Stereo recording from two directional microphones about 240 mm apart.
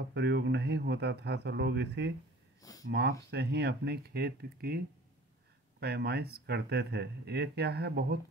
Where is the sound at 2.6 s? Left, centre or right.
Centre.